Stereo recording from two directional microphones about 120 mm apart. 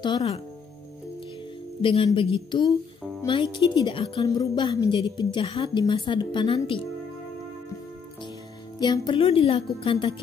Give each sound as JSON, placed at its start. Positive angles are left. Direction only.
{"t": 1.8, "sound": "a woman's voice", "side_deg": 50}
{"t": 8.7, "sound": "a woman's voice", "side_deg": 35}